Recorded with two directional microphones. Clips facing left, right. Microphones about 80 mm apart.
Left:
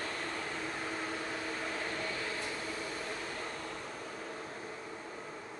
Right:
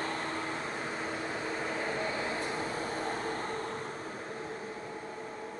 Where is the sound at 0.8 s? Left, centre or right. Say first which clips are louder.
Right 2 dB; right.